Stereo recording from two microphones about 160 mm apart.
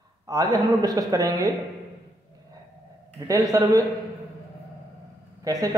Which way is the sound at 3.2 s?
20° right (ahead or behind).